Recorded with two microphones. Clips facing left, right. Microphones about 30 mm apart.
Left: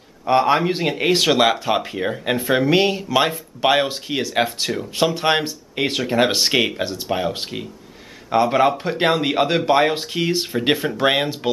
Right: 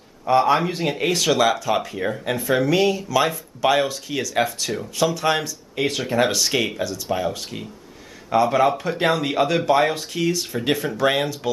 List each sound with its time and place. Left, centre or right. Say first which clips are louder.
0.3 s speech: left 1 dB; left
0.8 s a man's voice: left 2 dB; left
1.1 s speech: left 3 dB; left
5.8 s a man's voice: left 2 dB; left
8.3 s a man's voice: left 1 dB; left